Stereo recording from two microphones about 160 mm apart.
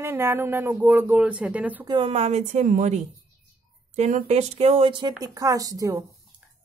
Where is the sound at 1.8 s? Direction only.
30° right (ahead or behind).